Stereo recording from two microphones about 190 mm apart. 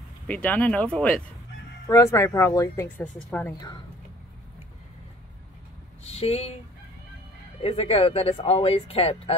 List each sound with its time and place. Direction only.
0.3 s speech: 5° left (ahead or behind)
3.5 s a woman's voice: 20° left (ahead or behind)
6.0 s speech: 30° left (ahead or behind)
7.6 s speech: 30° left (ahead or behind)